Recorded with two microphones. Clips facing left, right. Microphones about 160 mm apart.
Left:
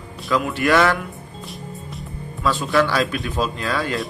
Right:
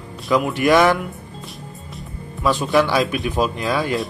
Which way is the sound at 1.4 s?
Centre (ahead or behind).